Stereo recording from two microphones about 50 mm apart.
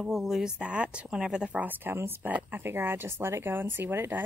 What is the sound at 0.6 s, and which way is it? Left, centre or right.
Speech, right.